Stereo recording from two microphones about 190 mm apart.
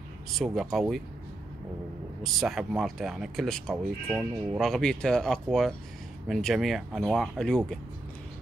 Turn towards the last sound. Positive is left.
turn(degrees=5)  # may be behind; listen again after turning